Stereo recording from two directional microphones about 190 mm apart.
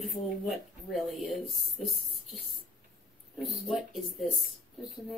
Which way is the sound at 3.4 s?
Centre (ahead or behind).